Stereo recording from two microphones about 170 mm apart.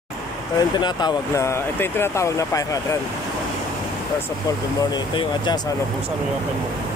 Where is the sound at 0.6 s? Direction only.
25° left (ahead or behind).